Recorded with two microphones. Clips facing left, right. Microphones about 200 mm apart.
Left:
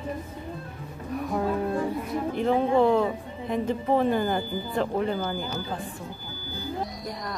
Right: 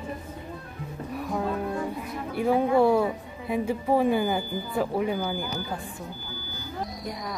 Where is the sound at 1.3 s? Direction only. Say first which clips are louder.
Left 2 dB; centre (ahead or behind).